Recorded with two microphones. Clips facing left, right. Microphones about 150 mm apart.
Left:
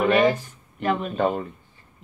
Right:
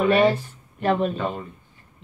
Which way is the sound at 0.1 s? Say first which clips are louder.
Right 1 dB; 30° right (ahead or behind).